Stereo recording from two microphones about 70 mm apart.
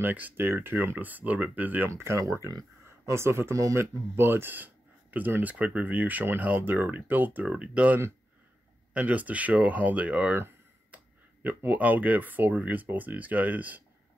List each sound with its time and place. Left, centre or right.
0.0 s speech: right
3.1 s speech: right
3.5 s speech: right
4.2 s speech: right
11.4 s speech: right